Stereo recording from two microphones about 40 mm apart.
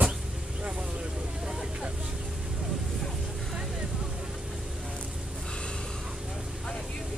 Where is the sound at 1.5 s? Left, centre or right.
Centre.